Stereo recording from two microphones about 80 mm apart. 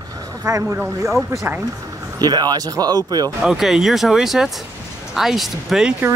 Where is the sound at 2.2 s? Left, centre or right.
Right.